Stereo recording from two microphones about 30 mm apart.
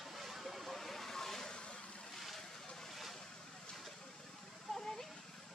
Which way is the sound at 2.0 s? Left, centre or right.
Centre.